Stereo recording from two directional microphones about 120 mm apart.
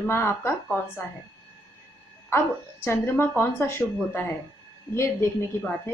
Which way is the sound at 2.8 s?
20° left (ahead or behind).